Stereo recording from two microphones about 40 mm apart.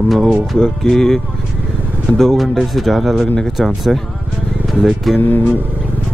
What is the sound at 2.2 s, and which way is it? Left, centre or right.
Speech, centre.